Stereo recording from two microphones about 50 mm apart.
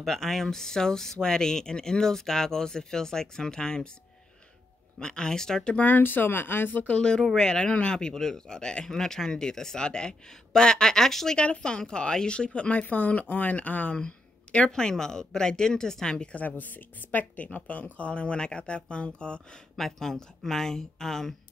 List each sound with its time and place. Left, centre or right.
0.0 s speech: centre
4.9 s speech: centre
5.8 s speech: left
6.9 s speech: centre
11.3 s speech: left
12.8 s speech: left; by 16.3 s centre
16.3 s speech: left
19.8 s speech: centre